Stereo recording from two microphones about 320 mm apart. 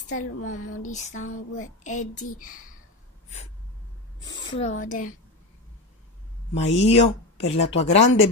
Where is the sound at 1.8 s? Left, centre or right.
Left.